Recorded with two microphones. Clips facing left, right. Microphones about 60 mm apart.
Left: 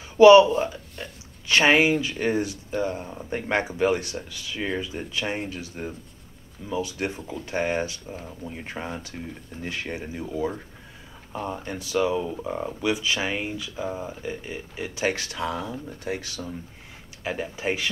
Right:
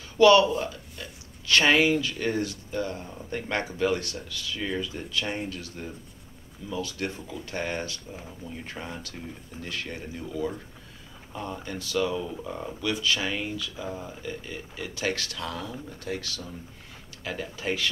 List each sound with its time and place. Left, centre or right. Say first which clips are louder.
0.2 s speech: left 6 dB; left
1.5 s speech: left 2 dB; left